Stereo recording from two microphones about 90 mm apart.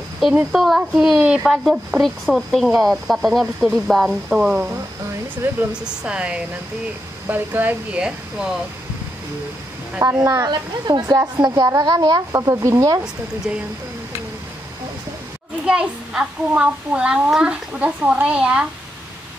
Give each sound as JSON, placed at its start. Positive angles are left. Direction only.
{"t": 0.5, "sound": "speech", "side_deg": -5}
{"t": 5.7, "sound": "a child's voice", "side_deg": -10}
{"t": 10.2, "sound": "speech", "side_deg": -40}
{"t": 15.6, "sound": "a child's voice", "side_deg": -10}